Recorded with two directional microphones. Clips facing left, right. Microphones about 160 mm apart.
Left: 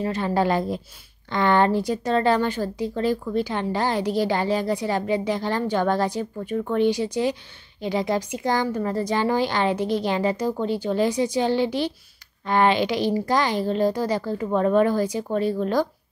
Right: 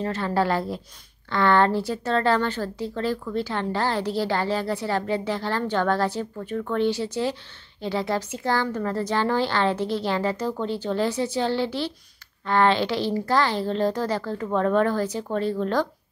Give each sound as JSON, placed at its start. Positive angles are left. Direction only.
{"t": 0.0, "sound": "a woman's voice", "side_deg": 15}